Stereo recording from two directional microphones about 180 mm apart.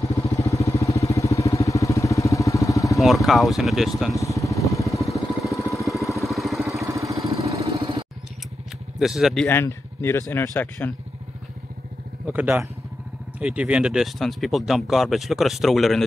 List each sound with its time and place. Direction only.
0.0 s vehicle: 20° left (ahead or behind)
3.0 s speech: centre (ahead or behind)
4.2 s vehicle: 20° left (ahead or behind)
5.7 s vehicle: centre (ahead or behind)
5.9 s vehicle: 15° left (ahead or behind)
6.2 s vehicle: centre (ahead or behind)
6.9 s vehicle: 15° right (ahead or behind)
7.7 s music: 30° right (ahead or behind)
9.0 s speech: centre (ahead or behind)
9.5 s speech: 15° left (ahead or behind)
12.3 s speech: 10° right (ahead or behind)